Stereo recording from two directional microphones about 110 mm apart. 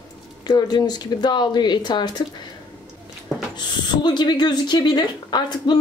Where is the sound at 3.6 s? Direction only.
45° left (ahead or behind).